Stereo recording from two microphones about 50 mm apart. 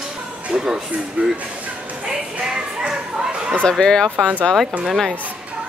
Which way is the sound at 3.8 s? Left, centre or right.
Centre.